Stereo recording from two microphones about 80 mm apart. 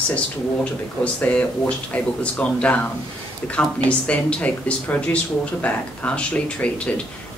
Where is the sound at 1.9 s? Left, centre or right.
Centre.